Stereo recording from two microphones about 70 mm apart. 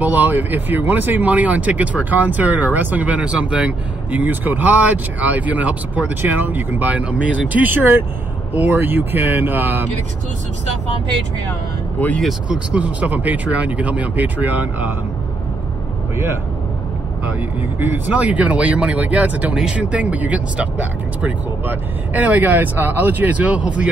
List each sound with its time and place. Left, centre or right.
0.0 s speech: right
12.4 s speech: centre
17.7 s speech: right